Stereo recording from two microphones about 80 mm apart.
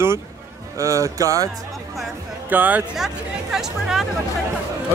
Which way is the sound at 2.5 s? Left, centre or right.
Right.